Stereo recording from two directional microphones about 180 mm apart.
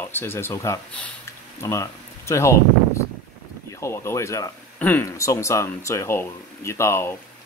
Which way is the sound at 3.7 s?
15° left (ahead or behind).